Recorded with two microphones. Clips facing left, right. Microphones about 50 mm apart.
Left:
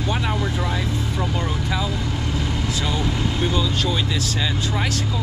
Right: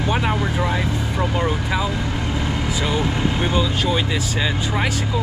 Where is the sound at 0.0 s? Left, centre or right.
Centre.